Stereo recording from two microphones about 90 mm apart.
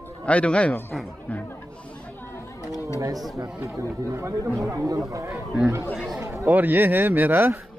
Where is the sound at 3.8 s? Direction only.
35° right (ahead or behind).